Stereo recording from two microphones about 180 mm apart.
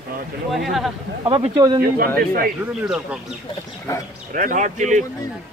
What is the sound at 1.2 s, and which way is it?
Speech, 30° right (ahead or behind).